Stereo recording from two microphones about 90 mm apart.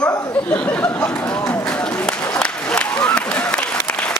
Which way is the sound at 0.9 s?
20° left (ahead or behind).